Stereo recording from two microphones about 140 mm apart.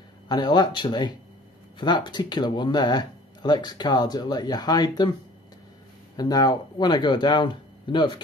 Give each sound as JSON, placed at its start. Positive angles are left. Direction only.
{"t": 0.3, "sound": "speech", "side_deg": 30}
{"t": 6.1, "sound": "speech", "side_deg": 30}